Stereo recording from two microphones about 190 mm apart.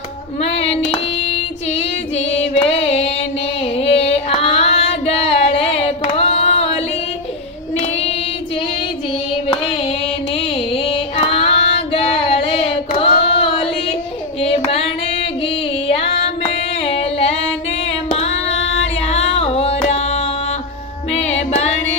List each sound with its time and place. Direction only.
0.4 s female singing: 35° left (ahead or behind)
10.3 s child singing: 30° left (ahead or behind)
14.4 s carnatic music: 30° left (ahead or behind)
16.8 s singing: 30° left (ahead or behind)
18.1 s child singing: 35° left (ahead or behind)
19.0 s music: 35° left (ahead or behind)